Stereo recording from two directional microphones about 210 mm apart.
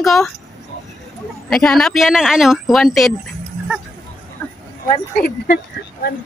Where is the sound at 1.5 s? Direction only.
Centre (ahead or behind).